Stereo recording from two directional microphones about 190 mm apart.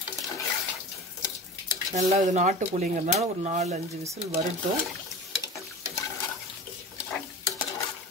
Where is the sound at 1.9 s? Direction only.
40° right (ahead or behind).